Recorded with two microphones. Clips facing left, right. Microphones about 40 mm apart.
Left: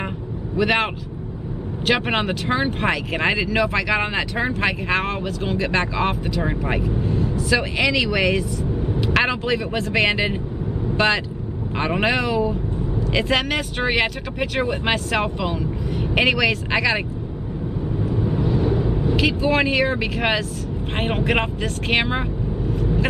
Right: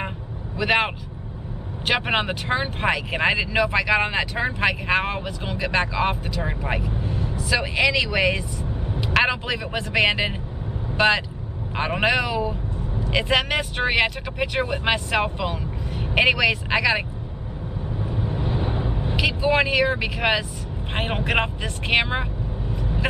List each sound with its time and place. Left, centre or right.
0.6 s speech: centre
1.9 s speech: centre
7.0 s vehicle: right
7.4 s a man's voice: centre
17.9 s vehicle: centre
18.4 s vehicle: right
19.1 s speech: centre
22.8 s vehicle: centre